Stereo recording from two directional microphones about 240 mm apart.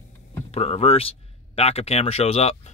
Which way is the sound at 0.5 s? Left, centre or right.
Left.